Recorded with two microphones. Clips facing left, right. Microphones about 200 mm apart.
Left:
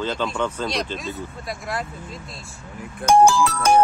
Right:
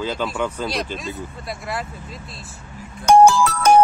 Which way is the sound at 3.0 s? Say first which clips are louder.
Right 3 dB; 60° right (ahead or behind).